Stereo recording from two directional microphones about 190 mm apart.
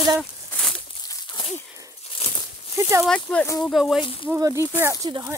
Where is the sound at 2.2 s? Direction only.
30° left (ahead or behind).